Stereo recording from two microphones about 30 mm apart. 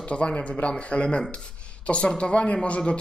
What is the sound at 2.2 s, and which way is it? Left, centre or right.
Speech, left.